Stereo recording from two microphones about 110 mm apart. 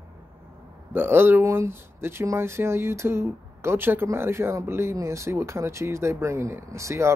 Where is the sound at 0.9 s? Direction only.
20° right (ahead or behind).